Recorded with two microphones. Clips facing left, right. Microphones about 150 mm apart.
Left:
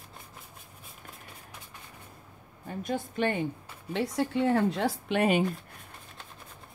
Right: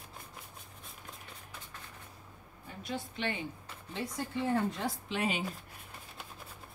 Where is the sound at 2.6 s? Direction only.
50° left (ahead or behind).